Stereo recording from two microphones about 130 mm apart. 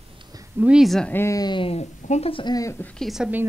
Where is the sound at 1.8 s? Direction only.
55° left (ahead or behind).